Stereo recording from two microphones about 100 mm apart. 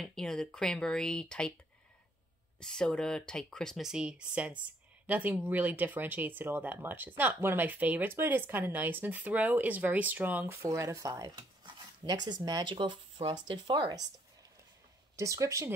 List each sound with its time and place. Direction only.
0.0 s speech: 5° left (ahead or behind)
2.6 s speech: 5° left (ahead or behind); by 12.6 s 40° right (ahead or behind)
12.6 s speech: 55° right (ahead or behind)
15.1 s speech: 30° right (ahead or behind)